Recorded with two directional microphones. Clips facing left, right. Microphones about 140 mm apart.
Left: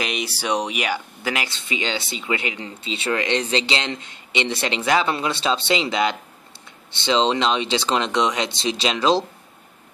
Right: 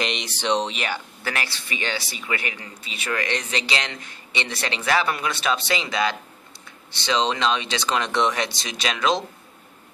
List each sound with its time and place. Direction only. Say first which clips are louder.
0.0 s speech: left 1 dB; 5° left (ahead or behind); by 9.2 s 30° left (ahead or behind)